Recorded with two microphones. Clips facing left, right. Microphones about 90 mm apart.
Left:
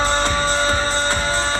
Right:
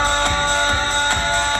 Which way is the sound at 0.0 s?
20° left (ahead or behind).